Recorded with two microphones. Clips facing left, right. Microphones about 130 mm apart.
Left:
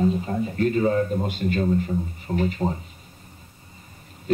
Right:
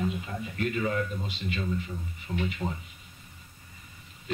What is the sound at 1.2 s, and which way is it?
Speech, 50° left (ahead or behind).